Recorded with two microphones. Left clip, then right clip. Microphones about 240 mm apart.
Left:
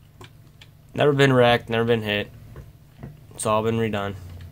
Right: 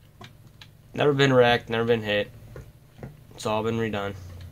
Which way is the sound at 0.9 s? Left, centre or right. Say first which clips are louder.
Left 2 dB; centre.